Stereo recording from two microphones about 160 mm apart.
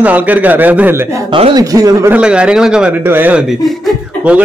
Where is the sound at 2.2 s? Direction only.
5° right (ahead or behind).